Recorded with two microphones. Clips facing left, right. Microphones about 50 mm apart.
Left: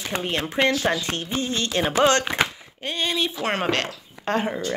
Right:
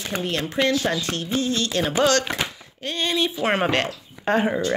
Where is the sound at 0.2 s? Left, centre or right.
Left.